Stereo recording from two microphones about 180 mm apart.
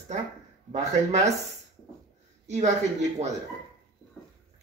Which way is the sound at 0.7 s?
40° right (ahead or behind).